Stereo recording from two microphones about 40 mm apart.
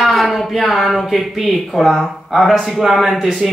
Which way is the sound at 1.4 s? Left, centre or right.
Centre.